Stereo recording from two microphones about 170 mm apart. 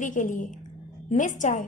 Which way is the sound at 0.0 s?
50° left (ahead or behind).